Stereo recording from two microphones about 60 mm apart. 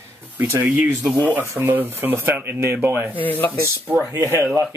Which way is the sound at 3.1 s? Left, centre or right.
Left.